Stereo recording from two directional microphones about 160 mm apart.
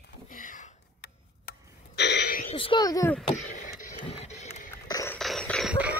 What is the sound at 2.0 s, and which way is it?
Throat clearing, 90° left.